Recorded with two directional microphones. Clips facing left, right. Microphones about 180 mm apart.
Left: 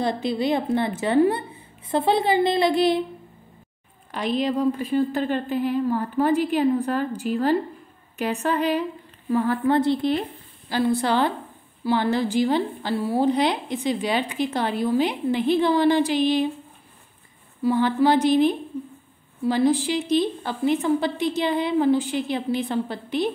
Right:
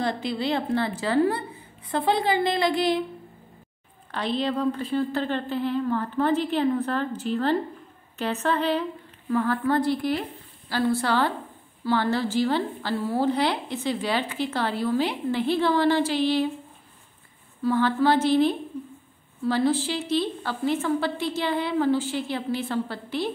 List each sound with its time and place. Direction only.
0.0 s a woman's voice: 20° left (ahead or behind)
4.1 s a woman's voice: 15° left (ahead or behind)
17.6 s a woman's voice: 15° left (ahead or behind)